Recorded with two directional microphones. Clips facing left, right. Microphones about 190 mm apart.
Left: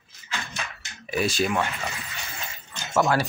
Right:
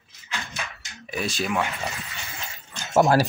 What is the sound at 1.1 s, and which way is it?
Speech, centre (ahead or behind).